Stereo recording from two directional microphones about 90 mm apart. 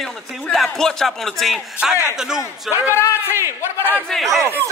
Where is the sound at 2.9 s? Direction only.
30° left (ahead or behind).